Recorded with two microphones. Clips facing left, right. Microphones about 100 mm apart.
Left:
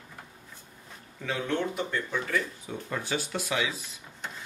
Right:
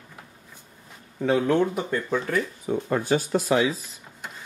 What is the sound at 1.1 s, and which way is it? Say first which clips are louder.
Speech: right 9 dB; 35° right (ahead or behind).